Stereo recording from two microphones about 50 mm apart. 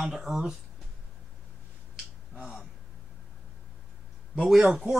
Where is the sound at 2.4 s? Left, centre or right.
Centre.